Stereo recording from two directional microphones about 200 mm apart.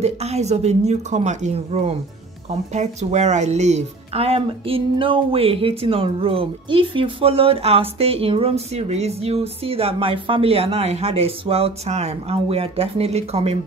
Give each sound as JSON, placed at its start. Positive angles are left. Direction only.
{"t": 0.0, "sound": "a woman's voice", "side_deg": -30}